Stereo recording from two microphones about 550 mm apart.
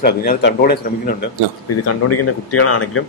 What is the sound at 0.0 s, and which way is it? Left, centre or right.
Speech, centre.